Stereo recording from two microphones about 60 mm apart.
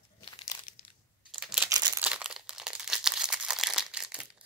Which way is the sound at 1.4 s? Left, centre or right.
Centre.